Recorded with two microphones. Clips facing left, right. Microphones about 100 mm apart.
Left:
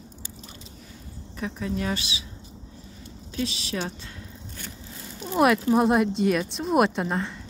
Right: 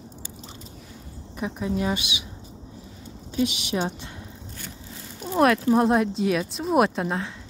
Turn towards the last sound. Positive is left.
turn(degrees=0)  # may be behind; listen again after turning